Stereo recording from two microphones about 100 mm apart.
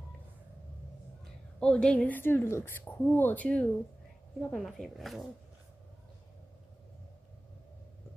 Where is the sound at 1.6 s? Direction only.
10° left (ahead or behind).